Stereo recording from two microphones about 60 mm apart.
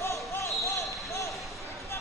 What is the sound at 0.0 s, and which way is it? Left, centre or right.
Basketball bounce, left.